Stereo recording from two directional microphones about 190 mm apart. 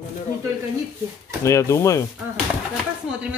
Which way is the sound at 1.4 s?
15° left (ahead or behind).